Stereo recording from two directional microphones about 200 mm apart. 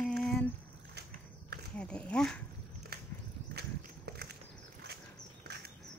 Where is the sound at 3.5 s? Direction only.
55° right (ahead or behind).